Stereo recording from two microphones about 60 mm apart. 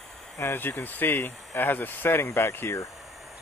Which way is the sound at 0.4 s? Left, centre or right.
Left.